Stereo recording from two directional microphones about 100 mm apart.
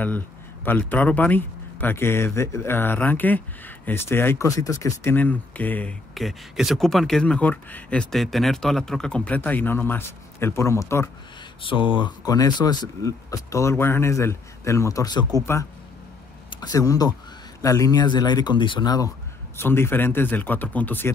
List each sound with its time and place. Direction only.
0.7 s speech: 20° left (ahead or behind)
4.5 s speech: 35° left (ahead or behind)
5.1 s speech: 15° left (ahead or behind)
6.1 s speech: centre (ahead or behind); by 11.1 s 30° left (ahead or behind)
11.6 s speech: 55° left (ahead or behind)
12.3 s speech: 40° left (ahead or behind)
16.6 s speech: 35° left (ahead or behind); by 18.9 s 55° left (ahead or behind)
18.9 s speech: 35° left (ahead or behind)
19.5 s speech: 25° left (ahead or behind)